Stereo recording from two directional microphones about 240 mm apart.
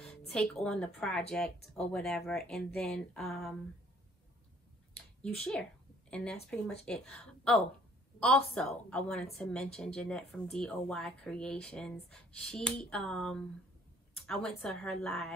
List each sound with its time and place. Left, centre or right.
0.3 s a woman's voice: centre
5.2 s a woman's voice: centre